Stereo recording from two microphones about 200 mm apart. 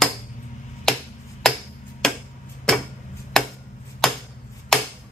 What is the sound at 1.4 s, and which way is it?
Hammer, centre (ahead or behind).